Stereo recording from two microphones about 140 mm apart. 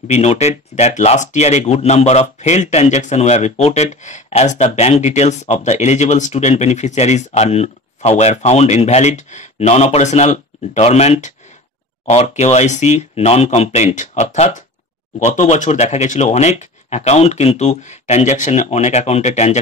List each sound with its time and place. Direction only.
0.1 s speech: 50° left (ahead or behind)